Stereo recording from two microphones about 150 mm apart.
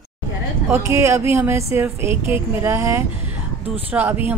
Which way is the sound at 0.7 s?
20° right (ahead or behind).